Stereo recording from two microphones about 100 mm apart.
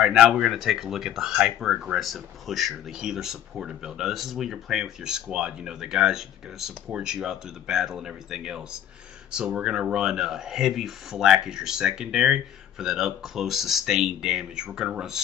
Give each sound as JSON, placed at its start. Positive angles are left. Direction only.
{"t": 0.0, "sound": "speech", "side_deg": -5}